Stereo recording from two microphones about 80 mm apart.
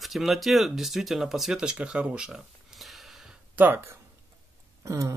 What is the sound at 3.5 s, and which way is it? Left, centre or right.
Speech, right.